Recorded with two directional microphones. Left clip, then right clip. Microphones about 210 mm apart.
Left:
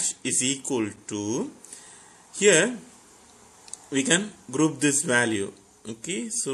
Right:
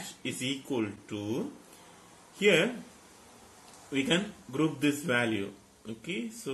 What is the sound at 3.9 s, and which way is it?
A man's voice, 55° left (ahead or behind).